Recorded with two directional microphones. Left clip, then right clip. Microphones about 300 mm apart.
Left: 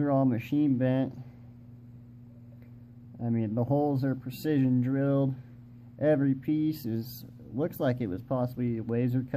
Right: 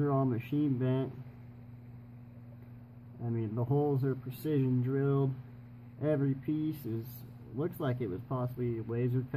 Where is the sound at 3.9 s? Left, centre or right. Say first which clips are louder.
Left 3 dB; left.